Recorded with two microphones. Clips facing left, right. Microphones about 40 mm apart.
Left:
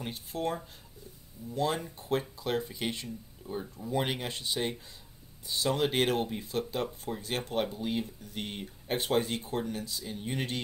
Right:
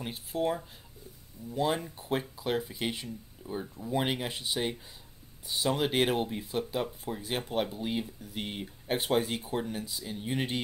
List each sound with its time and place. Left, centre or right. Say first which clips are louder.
0.0 s speech: right 3 dB; centre